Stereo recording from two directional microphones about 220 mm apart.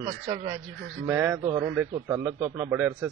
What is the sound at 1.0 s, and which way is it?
A man's voice, 10° right (ahead or behind).